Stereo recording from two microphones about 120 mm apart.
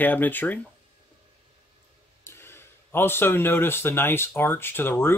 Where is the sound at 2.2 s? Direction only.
20° left (ahead or behind).